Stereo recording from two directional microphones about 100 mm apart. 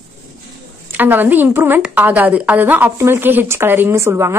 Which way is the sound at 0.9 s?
20° right (ahead or behind).